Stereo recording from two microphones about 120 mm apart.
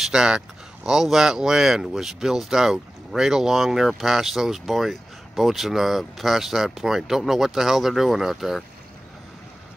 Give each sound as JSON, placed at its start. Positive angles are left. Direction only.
{"t": 0.0, "sound": "speech", "side_deg": -5}